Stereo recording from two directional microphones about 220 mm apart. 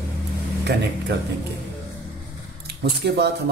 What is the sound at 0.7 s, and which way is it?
Speech, 50° right (ahead or behind).